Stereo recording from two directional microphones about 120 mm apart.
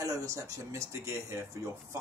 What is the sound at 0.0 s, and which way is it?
Speech, 25° right (ahead or behind).